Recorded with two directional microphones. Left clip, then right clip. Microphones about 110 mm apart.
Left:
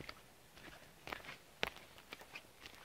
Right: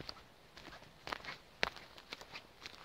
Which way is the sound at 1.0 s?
25° right (ahead or behind).